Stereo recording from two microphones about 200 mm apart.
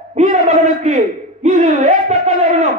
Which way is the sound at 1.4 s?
35° right (ahead or behind).